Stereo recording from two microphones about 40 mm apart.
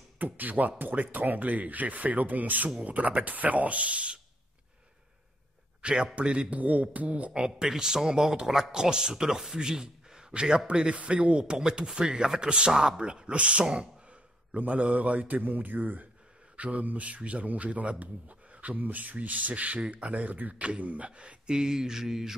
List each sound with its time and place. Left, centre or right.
0.2 s a man's voice: right
5.8 s a sound: right
6.1 s speech: right
6.6 s a man's voice: right
7.3 s a man's voice: centre; by 16.1 s right
16.5 s a man's voice: right
21.5 s speech: centre